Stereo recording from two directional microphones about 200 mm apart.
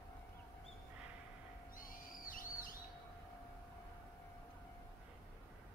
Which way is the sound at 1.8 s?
45° left (ahead or behind).